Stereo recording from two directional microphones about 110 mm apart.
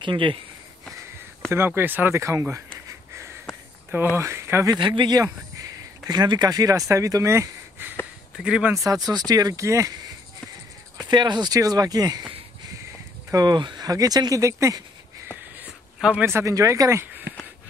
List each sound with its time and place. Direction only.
0.0 s speech: 50° right (ahead or behind)
1.5 s speech: 20° right (ahead or behind)
4.7 s speech: 45° right (ahead or behind); by 7.9 s 25° right (ahead or behind)
8.4 s speech: 10° right (ahead or behind)
8.7 s speech: 35° right (ahead or behind)
11.0 s speech: 40° right (ahead or behind)
13.3 s speech: 35° right (ahead or behind)
15.6 s a sound: 10° right (ahead or behind)
16.3 s speech: 25° right (ahead or behind)